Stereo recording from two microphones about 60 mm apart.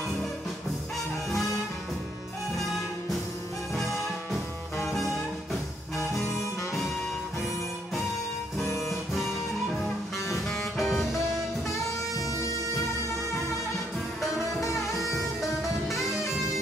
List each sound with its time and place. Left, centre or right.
3.7 s music: centre
8.7 s music: centre
10.5 s music: centre
14.6 s music: left